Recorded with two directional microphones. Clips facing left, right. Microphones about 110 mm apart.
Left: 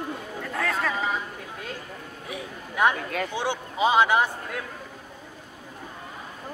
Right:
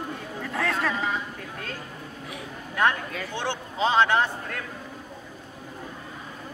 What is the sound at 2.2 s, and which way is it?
A man's voice, 10° left (ahead or behind).